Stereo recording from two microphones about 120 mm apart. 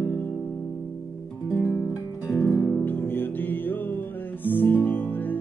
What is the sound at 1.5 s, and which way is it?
Music, 15° left (ahead or behind).